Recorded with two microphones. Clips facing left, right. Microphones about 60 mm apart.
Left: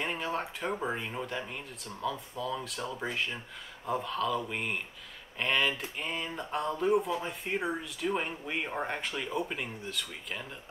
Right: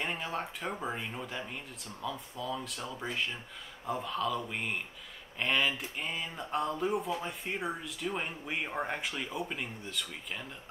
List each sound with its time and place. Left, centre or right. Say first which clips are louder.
0.0 s speech: left 2 dB; centre